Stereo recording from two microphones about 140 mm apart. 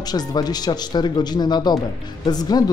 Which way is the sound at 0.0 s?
30° left (ahead or behind).